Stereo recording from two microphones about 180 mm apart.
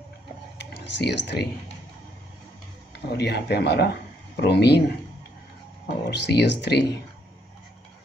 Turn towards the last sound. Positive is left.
turn(degrees=70)  # may be behind; listen again after turning